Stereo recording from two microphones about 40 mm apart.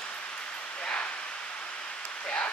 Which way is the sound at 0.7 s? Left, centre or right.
Left.